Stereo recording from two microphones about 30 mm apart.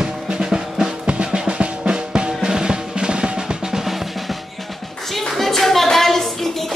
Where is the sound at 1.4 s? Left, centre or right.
Right.